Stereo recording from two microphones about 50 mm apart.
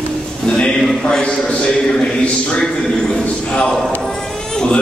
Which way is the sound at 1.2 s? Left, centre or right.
Left.